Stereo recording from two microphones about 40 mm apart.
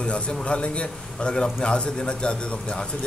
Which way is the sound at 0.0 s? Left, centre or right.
Left.